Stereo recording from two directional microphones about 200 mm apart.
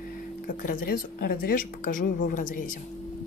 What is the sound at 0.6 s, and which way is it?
A woman's voice, 50° left (ahead or behind).